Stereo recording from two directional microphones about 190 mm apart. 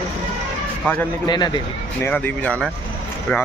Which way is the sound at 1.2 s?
20° left (ahead or behind).